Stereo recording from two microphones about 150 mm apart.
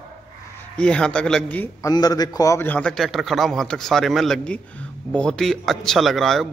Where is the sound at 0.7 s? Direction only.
5° left (ahead or behind).